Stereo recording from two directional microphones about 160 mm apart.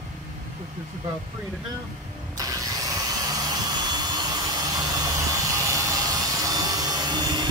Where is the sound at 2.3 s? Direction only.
20° right (ahead or behind).